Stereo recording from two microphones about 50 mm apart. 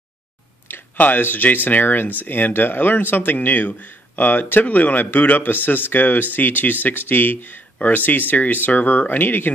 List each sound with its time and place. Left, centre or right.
0.7 s speech: left